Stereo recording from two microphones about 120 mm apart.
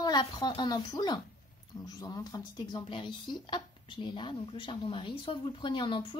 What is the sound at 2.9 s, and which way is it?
A woman's voice, 40° left (ahead or behind).